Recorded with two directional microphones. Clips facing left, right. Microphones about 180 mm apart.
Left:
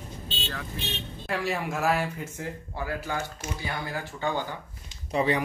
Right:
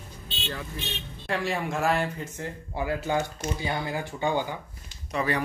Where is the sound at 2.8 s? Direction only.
20° right (ahead or behind).